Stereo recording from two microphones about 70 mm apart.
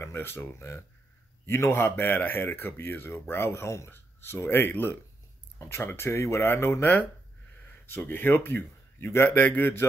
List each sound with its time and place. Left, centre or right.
0.0 s a man's voice: left
3.9 s a man's voice: left
7.9 s a man's voice: left